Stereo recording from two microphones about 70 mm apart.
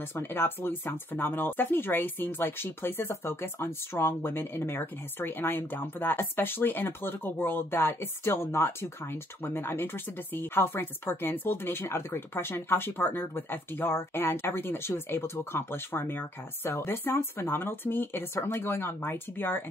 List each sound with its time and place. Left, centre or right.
0.1 s speech: left